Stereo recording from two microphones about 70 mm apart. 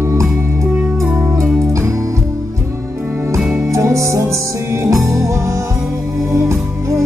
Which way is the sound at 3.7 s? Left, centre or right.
Right.